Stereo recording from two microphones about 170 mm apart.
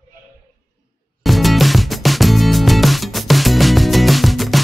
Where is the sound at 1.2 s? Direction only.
Centre (ahead or behind).